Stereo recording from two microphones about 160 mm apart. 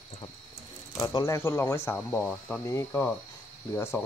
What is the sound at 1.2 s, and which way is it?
Speech, 15° left (ahead or behind).